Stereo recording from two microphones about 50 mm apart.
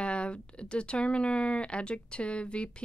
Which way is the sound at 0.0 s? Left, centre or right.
Left.